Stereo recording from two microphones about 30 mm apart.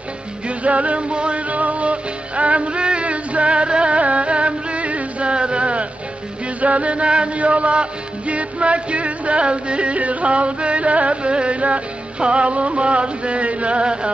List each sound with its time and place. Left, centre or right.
0.5 s music: right
1.5 s music: right
5.3 s a sound: right
6.4 s music: right